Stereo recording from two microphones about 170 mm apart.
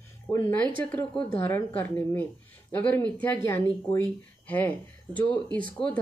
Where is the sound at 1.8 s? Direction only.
10° left (ahead or behind).